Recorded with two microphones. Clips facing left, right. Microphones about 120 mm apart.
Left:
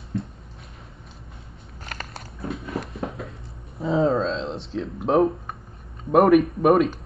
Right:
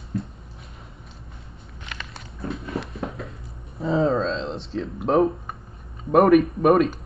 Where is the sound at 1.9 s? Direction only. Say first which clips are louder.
Left 2 dB; 45° left (ahead or behind).